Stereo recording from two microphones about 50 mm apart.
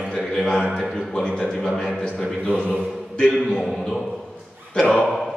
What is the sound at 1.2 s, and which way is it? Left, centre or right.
Speech, centre.